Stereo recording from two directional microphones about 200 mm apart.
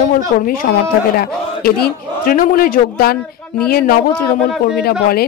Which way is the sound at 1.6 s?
50° left (ahead or behind).